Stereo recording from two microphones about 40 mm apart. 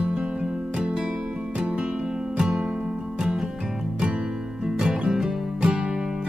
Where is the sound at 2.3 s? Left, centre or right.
Centre.